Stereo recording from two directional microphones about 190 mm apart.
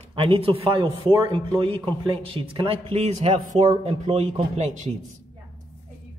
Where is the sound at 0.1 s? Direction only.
30° right (ahead or behind).